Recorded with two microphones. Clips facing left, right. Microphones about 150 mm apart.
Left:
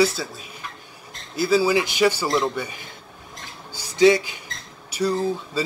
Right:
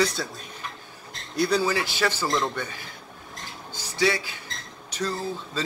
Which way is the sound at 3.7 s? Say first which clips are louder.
Left 9 dB; 20° left (ahead or behind).